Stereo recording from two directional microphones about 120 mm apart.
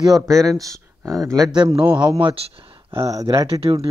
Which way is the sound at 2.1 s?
50° right (ahead or behind).